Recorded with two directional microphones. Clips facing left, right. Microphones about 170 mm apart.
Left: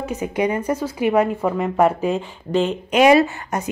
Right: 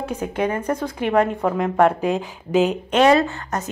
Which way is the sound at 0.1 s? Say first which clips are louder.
Left 2 dB; 10° left (ahead or behind).